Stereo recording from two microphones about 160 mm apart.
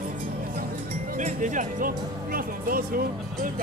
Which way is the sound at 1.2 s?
45° right (ahead or behind).